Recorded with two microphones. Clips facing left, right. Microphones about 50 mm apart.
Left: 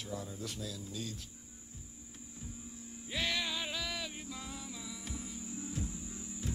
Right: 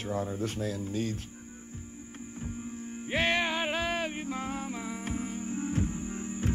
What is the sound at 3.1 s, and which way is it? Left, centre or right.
Music, right.